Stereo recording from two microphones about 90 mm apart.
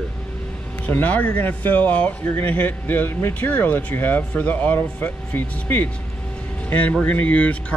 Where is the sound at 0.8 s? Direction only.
20° left (ahead or behind).